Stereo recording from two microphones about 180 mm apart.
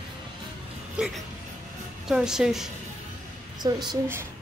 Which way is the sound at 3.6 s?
20° right (ahead or behind).